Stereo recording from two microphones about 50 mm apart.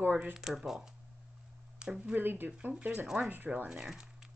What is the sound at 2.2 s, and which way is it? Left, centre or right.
Speech, right.